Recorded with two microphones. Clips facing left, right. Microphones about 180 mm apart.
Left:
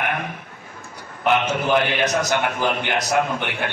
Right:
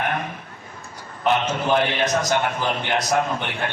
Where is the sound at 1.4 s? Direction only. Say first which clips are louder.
Left 1 dB; 65° left (ahead or behind).